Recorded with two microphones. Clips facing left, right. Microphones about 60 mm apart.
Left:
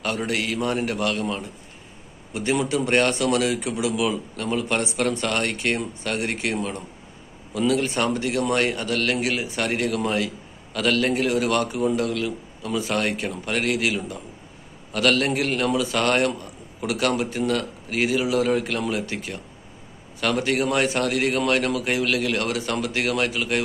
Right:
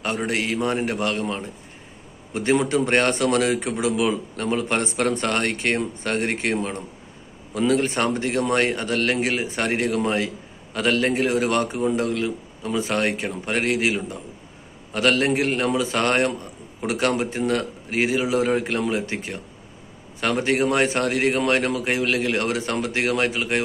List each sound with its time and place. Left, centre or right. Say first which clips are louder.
0.0 s a man's voice: right 1 dB; right